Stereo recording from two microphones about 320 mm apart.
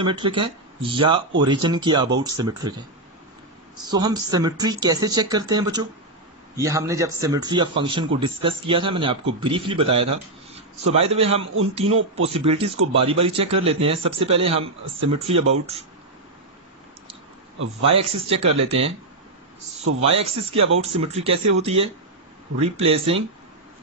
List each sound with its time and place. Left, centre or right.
0.0 s a man's voice: centre
3.7 s a man's voice: centre
17.8 s speech: centre
20.0 s a man's voice: centre